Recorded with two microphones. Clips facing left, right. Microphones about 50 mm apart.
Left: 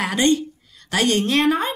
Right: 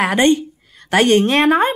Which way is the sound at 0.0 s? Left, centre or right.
Right.